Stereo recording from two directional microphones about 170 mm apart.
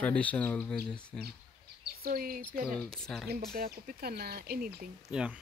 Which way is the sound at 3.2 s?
60° right (ahead or behind).